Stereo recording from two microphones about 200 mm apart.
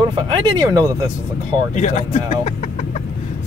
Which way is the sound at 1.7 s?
35° left (ahead or behind).